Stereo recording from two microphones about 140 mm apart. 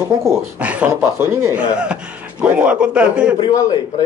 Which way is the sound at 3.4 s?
25° left (ahead or behind).